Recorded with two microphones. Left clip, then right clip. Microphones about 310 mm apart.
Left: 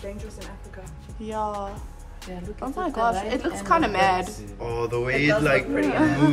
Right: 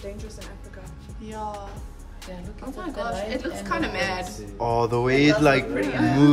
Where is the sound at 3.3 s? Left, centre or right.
Centre.